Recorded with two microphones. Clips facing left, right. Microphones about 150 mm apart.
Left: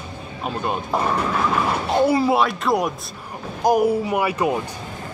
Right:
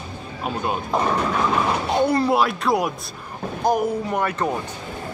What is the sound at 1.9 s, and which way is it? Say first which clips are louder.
Speech: left 2 dB; 5° left (ahead or behind).